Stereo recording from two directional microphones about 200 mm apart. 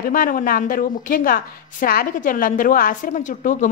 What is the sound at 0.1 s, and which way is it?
A woman's voice, 40° left (ahead or behind).